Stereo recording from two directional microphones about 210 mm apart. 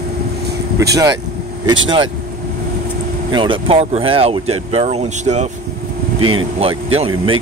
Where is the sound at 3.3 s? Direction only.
25° right (ahead or behind).